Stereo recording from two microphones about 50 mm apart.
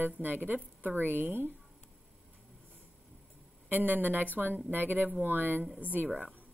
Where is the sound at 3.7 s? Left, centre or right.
Right.